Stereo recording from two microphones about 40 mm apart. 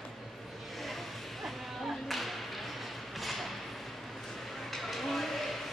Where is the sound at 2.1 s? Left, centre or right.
Centre.